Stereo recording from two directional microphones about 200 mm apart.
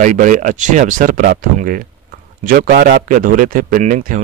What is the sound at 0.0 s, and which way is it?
Speech, 40° right (ahead or behind).